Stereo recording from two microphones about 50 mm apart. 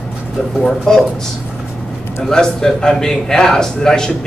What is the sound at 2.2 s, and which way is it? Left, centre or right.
Speech, centre.